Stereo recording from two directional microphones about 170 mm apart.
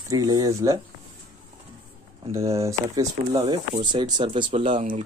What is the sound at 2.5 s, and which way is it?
Speech, 20° right (ahead or behind).